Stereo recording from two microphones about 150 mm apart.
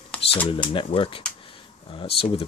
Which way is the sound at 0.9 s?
35° left (ahead or behind).